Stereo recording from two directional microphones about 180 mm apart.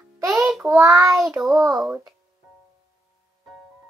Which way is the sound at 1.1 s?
Centre (ahead or behind).